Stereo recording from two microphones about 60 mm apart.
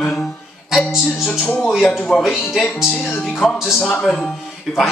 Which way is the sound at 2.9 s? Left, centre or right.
Centre.